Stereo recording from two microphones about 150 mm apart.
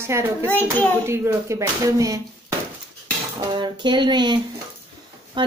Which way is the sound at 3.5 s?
30° right (ahead or behind).